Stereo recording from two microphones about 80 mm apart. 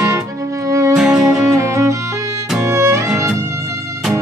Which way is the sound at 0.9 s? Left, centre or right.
Centre.